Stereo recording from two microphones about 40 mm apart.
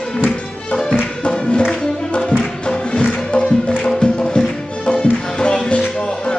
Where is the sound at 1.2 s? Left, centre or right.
Left.